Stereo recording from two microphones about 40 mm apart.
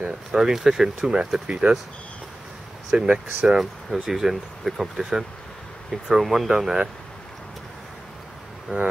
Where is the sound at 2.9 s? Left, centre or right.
Right.